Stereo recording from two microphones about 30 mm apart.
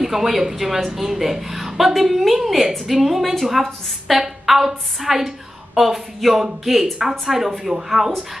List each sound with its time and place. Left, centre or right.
0.0 s a woman's voice: centre
4.5 s a woman's voice: centre
8.0 s speech: right